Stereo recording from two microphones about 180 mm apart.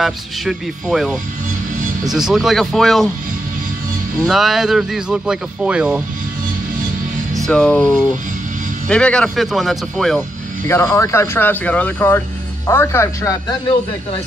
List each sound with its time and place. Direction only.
0.0 s speech: centre (ahead or behind)
4.3 s speech: centre (ahead or behind)
7.3 s speech: 5° left (ahead or behind)
10.7 s speech: 15° left (ahead or behind)